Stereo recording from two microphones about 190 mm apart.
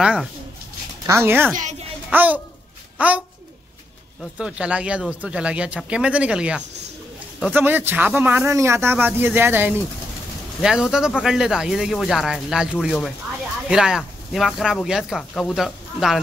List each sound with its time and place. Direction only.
0.0 s speech: 5° right (ahead or behind)
1.5 s a woman's voice: 40° right (ahead or behind)
2.0 s speech: 10° right (ahead or behind)
4.2 s speech: 5° right (ahead or behind)